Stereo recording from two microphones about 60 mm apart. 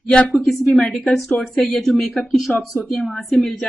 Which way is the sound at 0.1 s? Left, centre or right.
Left.